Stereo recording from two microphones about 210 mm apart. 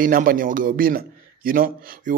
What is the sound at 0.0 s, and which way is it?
A man's voice, 40° right (ahead or behind).